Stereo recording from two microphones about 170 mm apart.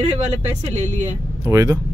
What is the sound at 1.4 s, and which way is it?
Speech, 20° right (ahead or behind).